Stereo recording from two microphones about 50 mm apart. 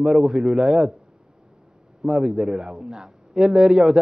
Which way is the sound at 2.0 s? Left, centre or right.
Centre.